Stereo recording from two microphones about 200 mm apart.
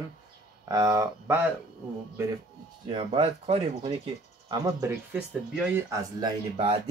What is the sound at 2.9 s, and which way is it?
Speech, 25° right (ahead or behind).